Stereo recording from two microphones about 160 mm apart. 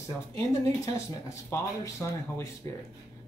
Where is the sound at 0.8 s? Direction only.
20° left (ahead or behind).